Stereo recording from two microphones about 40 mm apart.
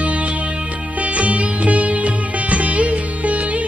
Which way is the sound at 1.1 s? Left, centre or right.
Right.